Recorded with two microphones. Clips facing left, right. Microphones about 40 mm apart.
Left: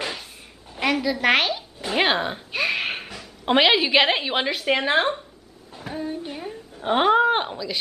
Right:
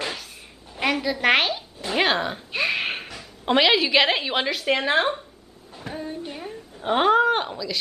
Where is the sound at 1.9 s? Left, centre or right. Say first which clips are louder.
Left 1 dB; centre.